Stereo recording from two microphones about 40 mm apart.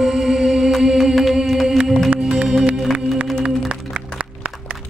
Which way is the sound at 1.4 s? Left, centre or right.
Centre.